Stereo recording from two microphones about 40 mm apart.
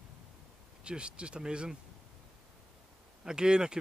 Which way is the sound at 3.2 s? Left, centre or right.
Centre.